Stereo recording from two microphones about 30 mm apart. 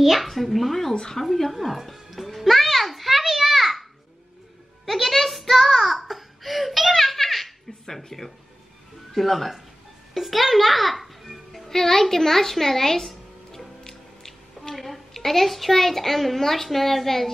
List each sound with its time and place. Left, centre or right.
0.0 s speech: centre
0.9 s a woman's voice: centre
1.2 s music: centre
4.8 s a sound: centre
7.8 s speech: centre
10.1 s music: centre
11.8 s a child's voice: centre
13.5 s music: centre
14.8 s a child's voice: centre